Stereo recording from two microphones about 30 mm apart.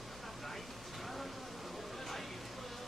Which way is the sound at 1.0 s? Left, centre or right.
Centre.